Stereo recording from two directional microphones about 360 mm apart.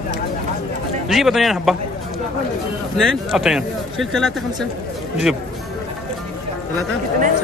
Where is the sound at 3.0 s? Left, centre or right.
Centre.